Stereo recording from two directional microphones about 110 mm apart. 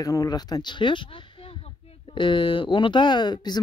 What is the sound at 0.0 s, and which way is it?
Speech, 35° left (ahead or behind).